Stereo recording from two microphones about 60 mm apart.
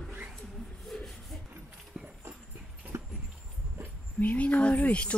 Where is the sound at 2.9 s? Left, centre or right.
Right.